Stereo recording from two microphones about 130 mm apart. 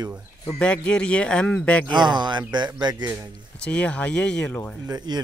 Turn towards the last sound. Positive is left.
turn(degrees=-35)  # may be behind; listen again after turning